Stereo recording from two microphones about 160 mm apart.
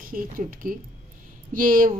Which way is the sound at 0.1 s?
55° right (ahead or behind).